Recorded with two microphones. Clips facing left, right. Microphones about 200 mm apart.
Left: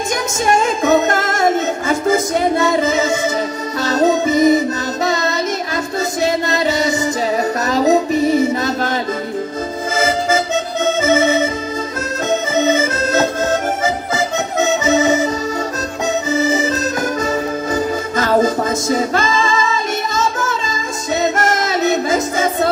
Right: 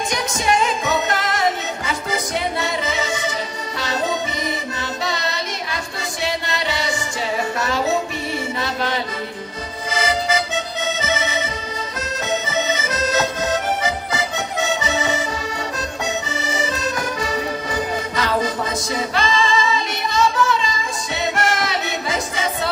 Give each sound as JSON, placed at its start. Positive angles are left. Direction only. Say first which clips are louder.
{"t": 0.1, "sound": "music", "louder": "left 5 dB", "side_deg": 45}
{"t": 9.9, "sound": "accordion", "louder": "left 4 dB", "side_deg": 45}
{"t": 16.3, "sound": "accordion", "louder": "left 9 dB", "side_deg": 40}
{"t": 17.2, "sound": "music", "louder": "left 5 dB", "side_deg": 45}